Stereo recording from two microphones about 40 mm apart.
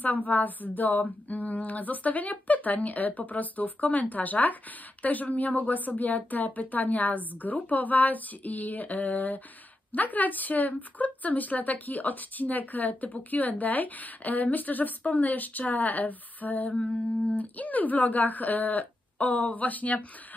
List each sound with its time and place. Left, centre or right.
0.0 s a woman's voice: left